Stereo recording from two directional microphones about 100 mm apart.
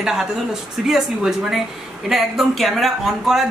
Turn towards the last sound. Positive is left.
turn(degrees=-5)  # may be behind; listen again after turning